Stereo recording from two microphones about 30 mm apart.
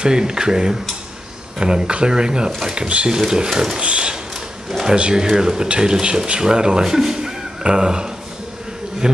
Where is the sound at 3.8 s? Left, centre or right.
Right.